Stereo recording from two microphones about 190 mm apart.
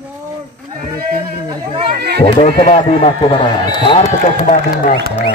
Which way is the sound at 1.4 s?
25° right (ahead or behind).